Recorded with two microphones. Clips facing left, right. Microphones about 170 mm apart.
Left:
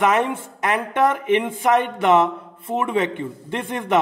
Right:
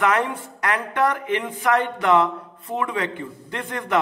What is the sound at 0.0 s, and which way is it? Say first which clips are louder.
Speech: left 2 dB; 20° left (ahead or behind).